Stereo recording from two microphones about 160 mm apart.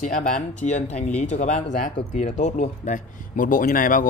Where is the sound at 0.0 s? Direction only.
50° left (ahead or behind).